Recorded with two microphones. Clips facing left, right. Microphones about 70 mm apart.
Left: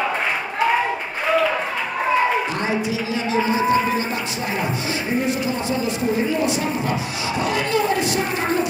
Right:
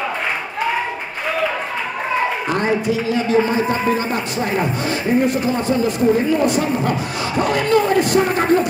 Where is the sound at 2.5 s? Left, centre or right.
Right.